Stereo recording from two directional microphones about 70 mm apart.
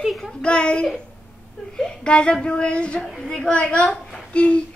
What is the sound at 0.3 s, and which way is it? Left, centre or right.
Speech, centre.